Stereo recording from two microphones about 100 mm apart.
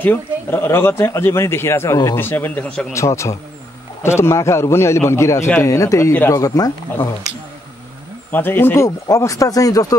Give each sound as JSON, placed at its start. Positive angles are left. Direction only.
{"t": 0.0, "sound": "speech", "side_deg": 20}
{"t": 8.3, "sound": "speech", "side_deg": 20}